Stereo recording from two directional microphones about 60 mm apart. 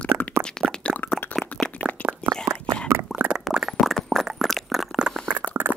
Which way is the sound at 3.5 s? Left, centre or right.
Centre.